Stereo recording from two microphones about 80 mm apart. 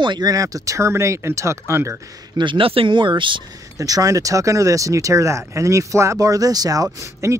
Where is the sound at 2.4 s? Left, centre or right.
Right.